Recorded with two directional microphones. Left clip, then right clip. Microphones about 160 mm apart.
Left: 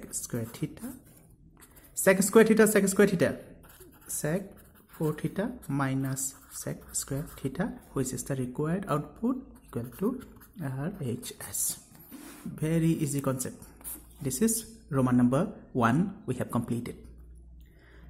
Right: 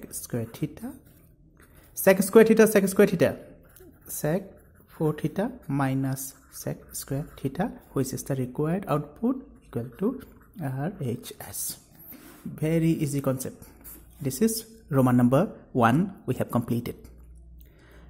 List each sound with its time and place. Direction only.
0.2 s speech: 20° right (ahead or behind)
2.0 s speech: 20° right (ahead or behind)